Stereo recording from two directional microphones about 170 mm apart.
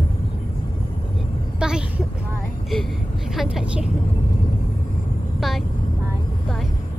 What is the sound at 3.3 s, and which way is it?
Speech, centre (ahead or behind).